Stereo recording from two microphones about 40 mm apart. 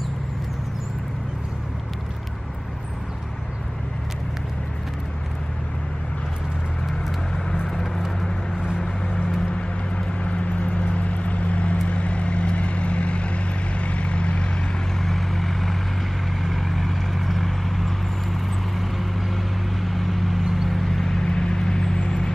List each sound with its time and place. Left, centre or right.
7.6 s vehicle: centre
9.5 s vehicle: left
15.0 s vehicle: centre
20.8 s vehicle: centre